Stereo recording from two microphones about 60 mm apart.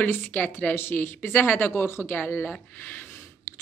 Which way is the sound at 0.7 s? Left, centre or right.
Left.